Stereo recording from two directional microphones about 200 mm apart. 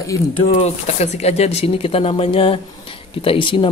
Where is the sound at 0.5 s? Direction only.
35° left (ahead or behind).